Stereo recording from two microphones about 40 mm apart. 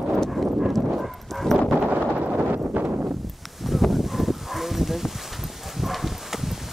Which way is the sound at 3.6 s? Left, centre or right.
Centre.